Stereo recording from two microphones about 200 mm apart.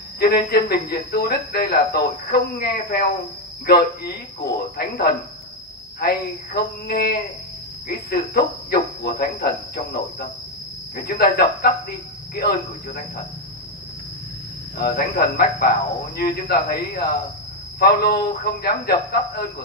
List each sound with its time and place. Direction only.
0.2 s speech: 50° left (ahead or behind)
14.8 s speech: 45° left (ahead or behind)